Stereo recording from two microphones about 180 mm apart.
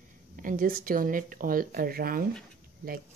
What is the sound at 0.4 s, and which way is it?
Speech, 50° right (ahead or behind).